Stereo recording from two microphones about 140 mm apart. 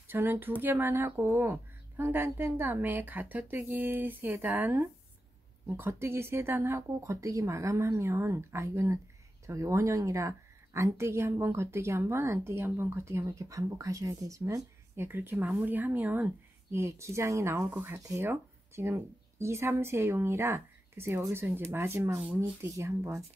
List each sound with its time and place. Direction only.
0.1 s a woman's voice: 15° right (ahead or behind)